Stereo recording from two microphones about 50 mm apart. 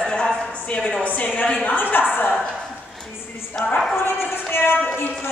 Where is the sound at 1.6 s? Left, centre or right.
Left.